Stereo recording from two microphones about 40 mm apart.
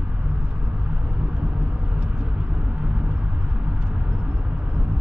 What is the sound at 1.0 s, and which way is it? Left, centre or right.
Vehicle, right.